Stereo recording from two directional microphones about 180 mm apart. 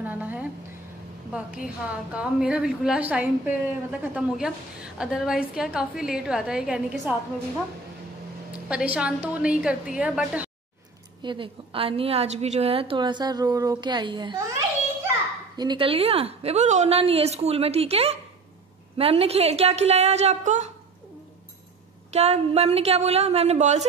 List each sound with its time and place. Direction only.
0.0 s a sound: 10° right (ahead or behind)
1.3 s a woman's voice: 5° right (ahead or behind)
8.6 s a woman's voice: 5° right (ahead or behind)
11.2 s a woman's voice: 30° right (ahead or behind)
15.5 s a woman's voice: 25° right (ahead or behind); by 20.7 s 40° right (ahead or behind)
22.1 s a woman's voice: 35° right (ahead or behind)